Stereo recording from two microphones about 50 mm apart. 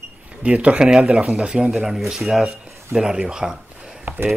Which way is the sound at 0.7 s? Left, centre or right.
Centre.